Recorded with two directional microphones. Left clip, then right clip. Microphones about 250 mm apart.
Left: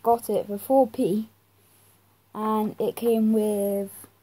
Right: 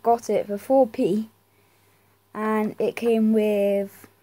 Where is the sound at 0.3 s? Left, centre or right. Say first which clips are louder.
Right 3 dB; centre.